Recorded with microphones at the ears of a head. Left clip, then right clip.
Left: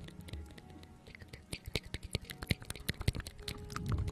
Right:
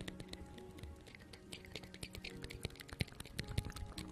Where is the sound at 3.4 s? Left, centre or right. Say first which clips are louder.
Left 5 dB; left.